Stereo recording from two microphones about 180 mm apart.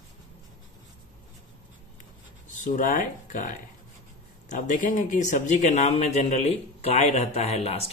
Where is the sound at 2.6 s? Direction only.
45° left (ahead or behind).